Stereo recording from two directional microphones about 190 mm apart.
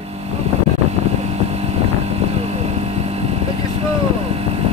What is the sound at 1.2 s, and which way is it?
Vehicle, 35° right (ahead or behind).